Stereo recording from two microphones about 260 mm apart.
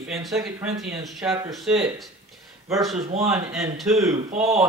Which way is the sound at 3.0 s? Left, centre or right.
Right.